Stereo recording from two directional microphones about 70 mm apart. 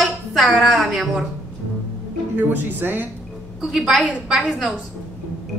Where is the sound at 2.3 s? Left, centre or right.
Right.